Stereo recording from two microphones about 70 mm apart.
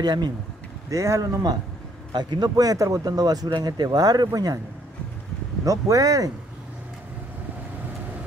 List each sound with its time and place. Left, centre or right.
0.0 s speech: right
0.8 s speech: right
2.1 s speech: right
5.7 s speech: right